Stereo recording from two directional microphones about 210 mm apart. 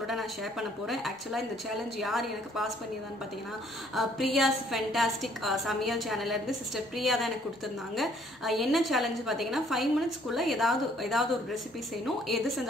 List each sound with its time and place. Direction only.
0.1 s a woman's voice: centre (ahead or behind)
3.9 s a woman's voice: centre (ahead or behind)
12.3 s a woman's voice: centre (ahead or behind)